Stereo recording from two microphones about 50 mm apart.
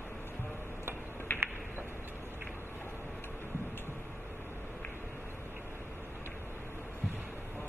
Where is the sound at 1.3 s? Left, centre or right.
Left.